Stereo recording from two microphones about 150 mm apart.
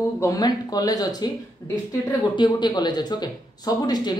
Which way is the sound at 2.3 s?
30° left (ahead or behind).